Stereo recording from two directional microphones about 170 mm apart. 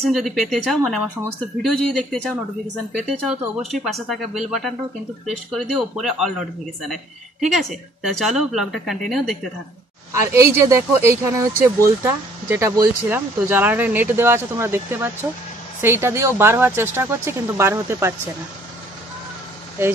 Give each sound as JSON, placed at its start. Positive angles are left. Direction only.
{"t": 0.0, "sound": "speech", "side_deg": 0}
{"t": 7.5, "sound": "speech", "side_deg": 0}
{"t": 10.1, "sound": "speech", "side_deg": -15}